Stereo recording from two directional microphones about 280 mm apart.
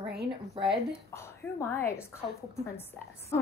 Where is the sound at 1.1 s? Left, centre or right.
Centre.